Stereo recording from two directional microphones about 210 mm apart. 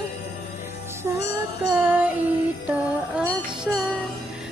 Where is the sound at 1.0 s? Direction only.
10° right (ahead or behind).